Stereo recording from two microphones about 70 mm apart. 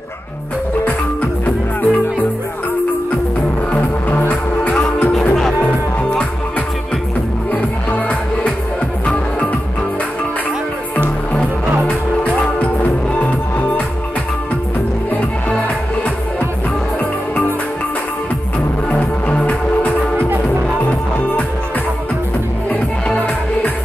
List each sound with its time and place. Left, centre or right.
1.4 s music: left
4.3 s music: left
7.5 s music: left
11.9 s music: centre
15.0 s music: left
18.9 s music: centre
23.0 s music: left